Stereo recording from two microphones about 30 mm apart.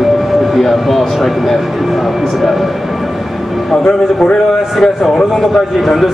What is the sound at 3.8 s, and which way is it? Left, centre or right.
Speech, left.